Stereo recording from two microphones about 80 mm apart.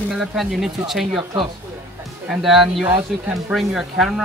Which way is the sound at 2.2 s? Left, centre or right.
Centre.